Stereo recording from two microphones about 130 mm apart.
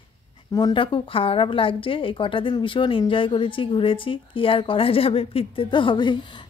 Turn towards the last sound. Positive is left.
turn(degrees=35)  # may be behind; listen again after turning